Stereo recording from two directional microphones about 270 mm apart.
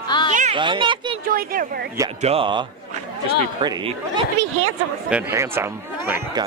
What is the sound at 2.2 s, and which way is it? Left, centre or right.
Speech, centre.